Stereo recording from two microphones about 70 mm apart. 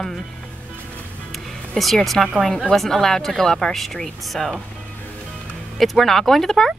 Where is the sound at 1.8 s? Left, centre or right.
Centre.